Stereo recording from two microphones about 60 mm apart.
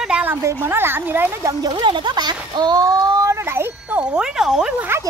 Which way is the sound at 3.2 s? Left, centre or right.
Right.